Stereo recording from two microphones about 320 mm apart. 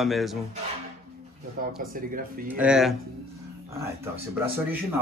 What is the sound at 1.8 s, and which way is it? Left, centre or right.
Speech, right.